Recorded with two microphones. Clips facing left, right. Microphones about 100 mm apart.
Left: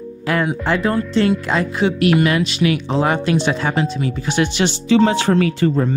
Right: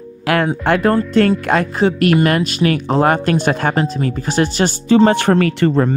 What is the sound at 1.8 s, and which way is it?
Speech, 40° right (ahead or behind).